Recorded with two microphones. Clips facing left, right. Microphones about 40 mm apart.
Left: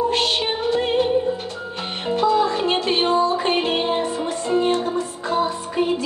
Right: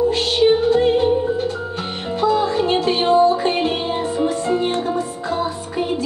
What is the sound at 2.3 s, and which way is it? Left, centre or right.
Music, left.